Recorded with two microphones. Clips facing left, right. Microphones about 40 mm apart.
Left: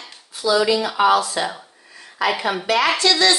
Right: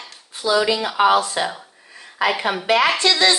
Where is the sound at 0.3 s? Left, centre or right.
Right.